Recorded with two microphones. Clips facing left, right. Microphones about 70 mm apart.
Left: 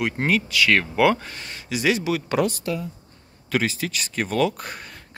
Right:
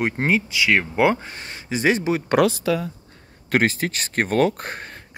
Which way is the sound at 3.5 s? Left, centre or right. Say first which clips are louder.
Right 4 dB; right.